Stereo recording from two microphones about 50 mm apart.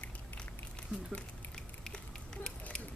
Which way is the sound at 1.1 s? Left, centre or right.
Centre.